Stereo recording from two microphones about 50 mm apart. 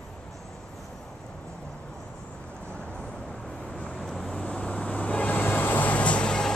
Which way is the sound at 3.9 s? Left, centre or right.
Centre.